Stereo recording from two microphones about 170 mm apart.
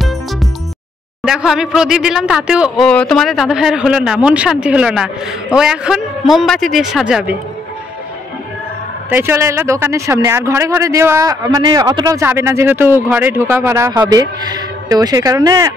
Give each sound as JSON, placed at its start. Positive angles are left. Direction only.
{"t": 1.2, "sound": "speech", "side_deg": -5}
{"t": 9.1, "sound": "speech", "side_deg": -15}